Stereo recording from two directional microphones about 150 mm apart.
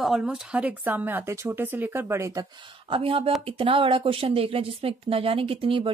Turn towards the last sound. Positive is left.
turn(degrees=-35)  # may be behind; listen again after turning